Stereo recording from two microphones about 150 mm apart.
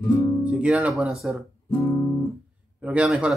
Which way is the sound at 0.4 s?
10° right (ahead or behind).